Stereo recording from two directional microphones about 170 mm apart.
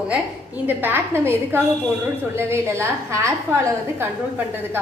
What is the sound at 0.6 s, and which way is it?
A woman's voice, 10° right (ahead or behind).